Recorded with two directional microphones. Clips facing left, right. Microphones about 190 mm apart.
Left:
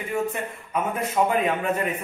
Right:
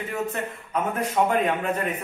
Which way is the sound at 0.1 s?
10° left (ahead or behind).